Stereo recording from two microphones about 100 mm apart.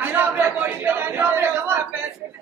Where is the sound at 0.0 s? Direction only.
20° right (ahead or behind).